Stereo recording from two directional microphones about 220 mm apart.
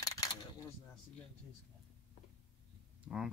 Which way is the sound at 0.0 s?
15° left (ahead or behind).